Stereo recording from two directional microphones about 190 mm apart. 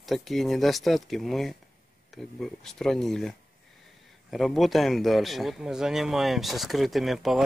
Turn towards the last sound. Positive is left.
turn(degrees=0)  # may be behind; listen again after turning